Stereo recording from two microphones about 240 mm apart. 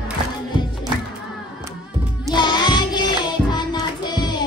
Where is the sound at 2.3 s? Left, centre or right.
Centre.